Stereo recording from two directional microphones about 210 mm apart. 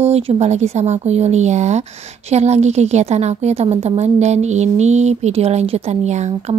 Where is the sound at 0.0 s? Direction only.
30° right (ahead or behind).